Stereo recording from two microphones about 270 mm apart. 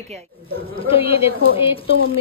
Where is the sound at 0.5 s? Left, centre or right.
Left.